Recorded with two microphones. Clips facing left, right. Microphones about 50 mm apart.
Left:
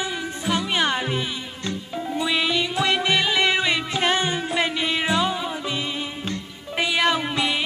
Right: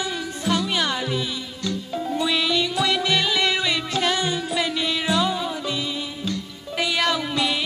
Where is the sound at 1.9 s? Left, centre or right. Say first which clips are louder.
Even; centre.